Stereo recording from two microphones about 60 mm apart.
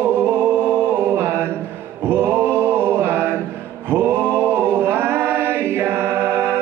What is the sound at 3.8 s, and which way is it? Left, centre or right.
Singing, right.